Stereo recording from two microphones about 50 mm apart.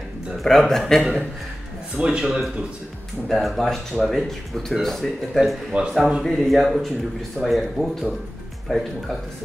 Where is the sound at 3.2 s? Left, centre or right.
Centre.